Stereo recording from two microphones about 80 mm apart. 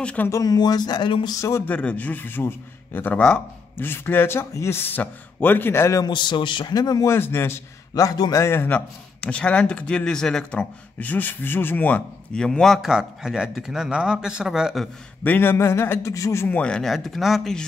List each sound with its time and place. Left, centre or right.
0.0 s speech: centre
0.3 s speech: left
1.7 s speech: centre; by 6.0 s left
6.0 s a man's voice: left
7.1 s speech: left
7.9 s a man's voice: left
8.5 s speech: left
8.7 s speech: centre
12.4 s speech: centre
12.8 s a man's voice: centre
15.2 s a man's voice: left
16.4 s speech: centre